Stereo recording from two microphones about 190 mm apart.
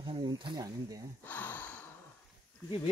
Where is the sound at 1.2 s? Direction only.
10° left (ahead or behind).